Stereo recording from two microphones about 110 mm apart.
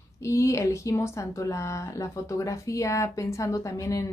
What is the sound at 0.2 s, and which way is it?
A woman's voice, 25° left (ahead or behind).